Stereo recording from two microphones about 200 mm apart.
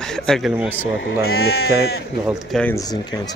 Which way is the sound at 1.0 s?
55° left (ahead or behind).